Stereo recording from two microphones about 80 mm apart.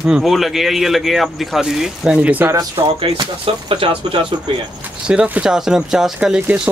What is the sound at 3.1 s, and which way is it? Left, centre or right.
Speech, right.